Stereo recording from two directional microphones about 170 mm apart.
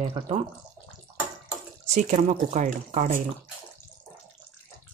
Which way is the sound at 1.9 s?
45° right (ahead or behind).